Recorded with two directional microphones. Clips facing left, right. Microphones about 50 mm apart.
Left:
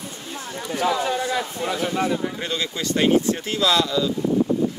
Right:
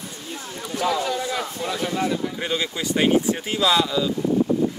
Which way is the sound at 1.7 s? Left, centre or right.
Centre.